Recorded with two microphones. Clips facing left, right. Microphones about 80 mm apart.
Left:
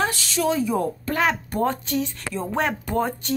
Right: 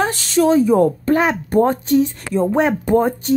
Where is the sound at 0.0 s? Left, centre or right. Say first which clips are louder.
Right 7 dB; right.